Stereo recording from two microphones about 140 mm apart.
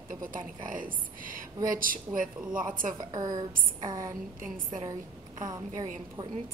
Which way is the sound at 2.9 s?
25° right (ahead or behind).